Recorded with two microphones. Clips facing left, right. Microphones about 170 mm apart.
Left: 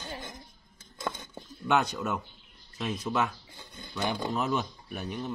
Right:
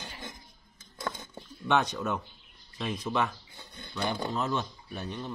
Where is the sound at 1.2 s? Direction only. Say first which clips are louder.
Left 1 dB; 10° left (ahead or behind).